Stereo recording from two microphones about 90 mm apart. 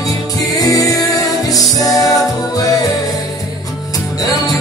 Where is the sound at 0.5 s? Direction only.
40° left (ahead or behind).